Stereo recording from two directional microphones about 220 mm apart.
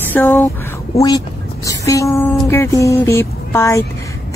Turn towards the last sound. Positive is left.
turn(degrees=10)  # may be behind; listen again after turning